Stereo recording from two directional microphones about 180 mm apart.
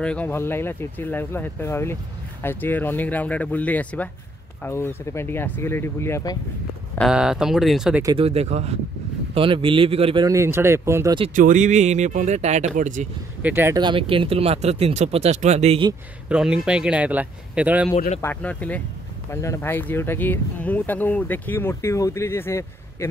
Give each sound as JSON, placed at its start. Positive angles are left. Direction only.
{"t": 0.0, "sound": "speech", "side_deg": 5}
{"t": 7.0, "sound": "speech", "side_deg": -5}
{"t": 8.2, "sound": "speech", "side_deg": -35}
{"t": 10.2, "sound": "speech", "side_deg": -15}
{"t": 11.3, "sound": "speech", "side_deg": -45}
{"t": 13.4, "sound": "speech", "side_deg": -10}
{"t": 13.7, "sound": "speech", "side_deg": -25}
{"t": 16.3, "sound": "speech", "side_deg": -5}
{"t": 17.9, "sound": "speech", "side_deg": 45}
{"t": 18.2, "sound": "speech", "side_deg": 10}